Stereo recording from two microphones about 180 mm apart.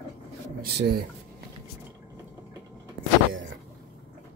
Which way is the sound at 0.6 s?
60° right (ahead or behind).